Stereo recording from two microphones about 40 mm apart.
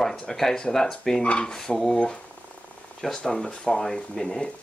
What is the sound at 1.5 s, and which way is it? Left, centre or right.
Speech, centre.